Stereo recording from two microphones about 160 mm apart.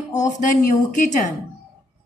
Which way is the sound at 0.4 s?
50° left (ahead or behind).